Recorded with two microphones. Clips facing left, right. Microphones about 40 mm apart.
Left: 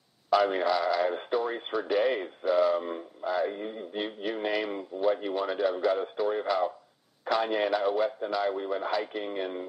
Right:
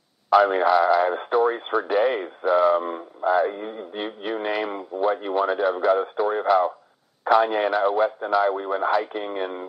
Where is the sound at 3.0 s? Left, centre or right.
Right.